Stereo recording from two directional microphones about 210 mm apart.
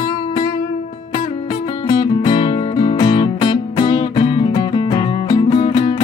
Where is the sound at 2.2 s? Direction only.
25° left (ahead or behind).